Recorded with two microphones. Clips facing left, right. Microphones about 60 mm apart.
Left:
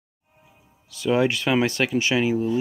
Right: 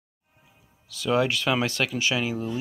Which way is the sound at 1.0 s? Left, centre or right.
Left.